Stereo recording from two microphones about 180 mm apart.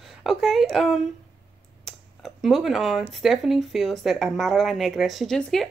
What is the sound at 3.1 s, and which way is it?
Speech, centre (ahead or behind).